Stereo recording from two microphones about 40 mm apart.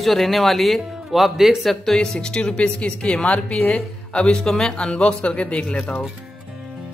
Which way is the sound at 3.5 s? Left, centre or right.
Centre.